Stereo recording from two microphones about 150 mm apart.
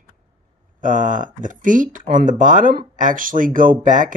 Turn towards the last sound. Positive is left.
turn(degrees=-60)  # may be behind; listen again after turning